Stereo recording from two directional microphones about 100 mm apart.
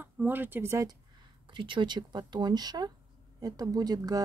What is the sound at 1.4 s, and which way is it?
A woman's voice, 55° right (ahead or behind).